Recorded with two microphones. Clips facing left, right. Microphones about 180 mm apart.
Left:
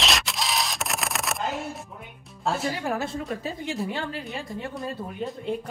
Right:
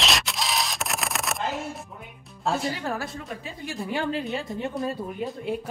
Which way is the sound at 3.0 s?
30° left (ahead or behind).